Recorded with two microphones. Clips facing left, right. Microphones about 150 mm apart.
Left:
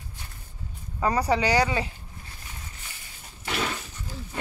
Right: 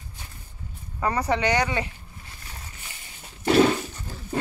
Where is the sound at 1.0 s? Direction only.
15° left (ahead or behind).